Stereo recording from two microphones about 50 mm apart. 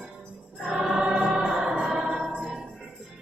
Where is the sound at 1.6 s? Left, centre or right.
Centre.